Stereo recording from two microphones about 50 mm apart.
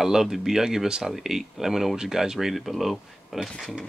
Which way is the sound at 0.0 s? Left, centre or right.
Centre.